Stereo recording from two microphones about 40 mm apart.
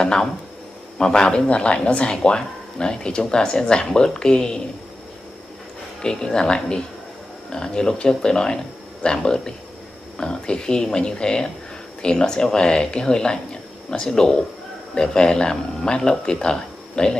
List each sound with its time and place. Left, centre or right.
0.0 s speech: left
6.0 s speech: centre